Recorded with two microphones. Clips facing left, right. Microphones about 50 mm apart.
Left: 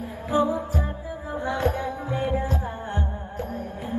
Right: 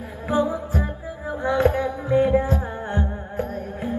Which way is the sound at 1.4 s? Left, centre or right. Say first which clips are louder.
Right 6 dB; right.